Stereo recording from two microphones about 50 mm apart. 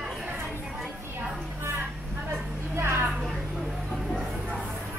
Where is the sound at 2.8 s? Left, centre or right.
Right.